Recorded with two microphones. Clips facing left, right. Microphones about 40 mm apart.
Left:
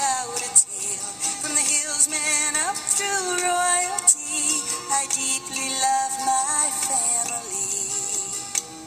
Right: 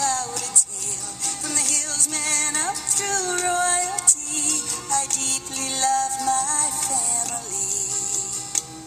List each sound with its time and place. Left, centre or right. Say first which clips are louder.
0.0 s music: even; left
3.4 s child singing: left 1 dB; centre
3.8 s music: even; left